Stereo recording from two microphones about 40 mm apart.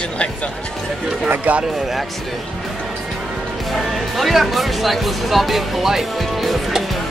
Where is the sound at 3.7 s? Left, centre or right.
Centre.